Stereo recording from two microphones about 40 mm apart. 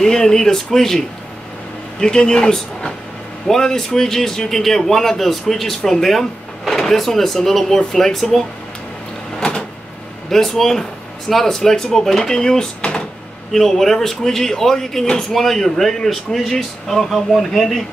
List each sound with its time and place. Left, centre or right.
0.0 s speech: centre
9.4 s a sound: centre
10.3 s speech: centre